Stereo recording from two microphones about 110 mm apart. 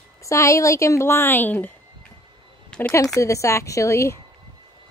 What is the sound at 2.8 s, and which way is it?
A woman's voice, 25° left (ahead or behind).